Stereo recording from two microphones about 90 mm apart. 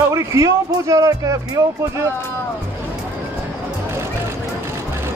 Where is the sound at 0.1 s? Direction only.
35° right (ahead or behind).